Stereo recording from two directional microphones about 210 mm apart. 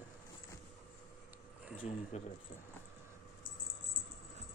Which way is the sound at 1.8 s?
30° left (ahead or behind).